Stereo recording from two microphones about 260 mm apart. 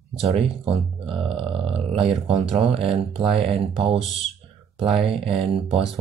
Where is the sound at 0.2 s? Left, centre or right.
Right.